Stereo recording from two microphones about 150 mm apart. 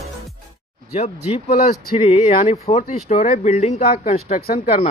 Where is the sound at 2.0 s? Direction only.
45° left (ahead or behind).